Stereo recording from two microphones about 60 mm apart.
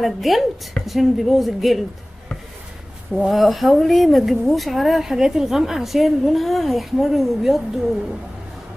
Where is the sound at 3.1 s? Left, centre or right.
Centre.